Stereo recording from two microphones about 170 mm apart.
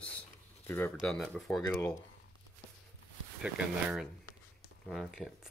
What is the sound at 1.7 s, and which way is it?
Speech, 15° left (ahead or behind).